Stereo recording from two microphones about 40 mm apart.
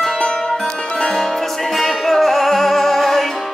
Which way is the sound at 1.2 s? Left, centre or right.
Centre.